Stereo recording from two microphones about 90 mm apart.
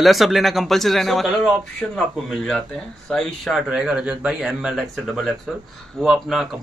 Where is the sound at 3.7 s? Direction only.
10° right (ahead or behind).